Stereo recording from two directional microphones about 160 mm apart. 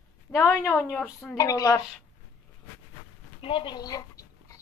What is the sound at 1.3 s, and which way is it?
Speech, 25° left (ahead or behind).